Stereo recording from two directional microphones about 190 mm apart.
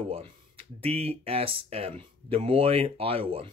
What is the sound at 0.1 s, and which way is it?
Speech, 30° right (ahead or behind).